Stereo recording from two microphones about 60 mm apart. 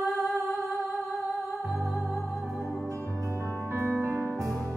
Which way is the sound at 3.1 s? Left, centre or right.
Right.